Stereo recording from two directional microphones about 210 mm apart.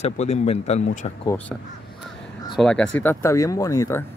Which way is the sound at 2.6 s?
5° left (ahead or behind).